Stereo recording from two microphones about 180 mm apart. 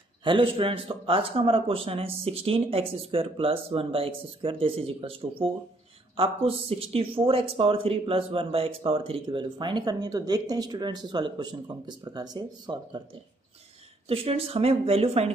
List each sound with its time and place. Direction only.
0.2 s speech: 30° right (ahead or behind)
14.0 s speech: 30° right (ahead or behind)